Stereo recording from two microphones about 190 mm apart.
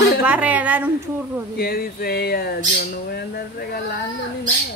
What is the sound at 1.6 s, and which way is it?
Squawk, 50° left (ahead or behind).